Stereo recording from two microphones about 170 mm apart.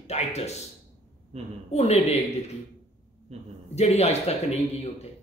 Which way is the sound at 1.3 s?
40° right (ahead or behind).